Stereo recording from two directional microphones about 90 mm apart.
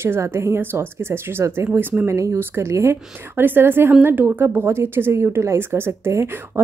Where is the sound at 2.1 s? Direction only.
35° right (ahead or behind).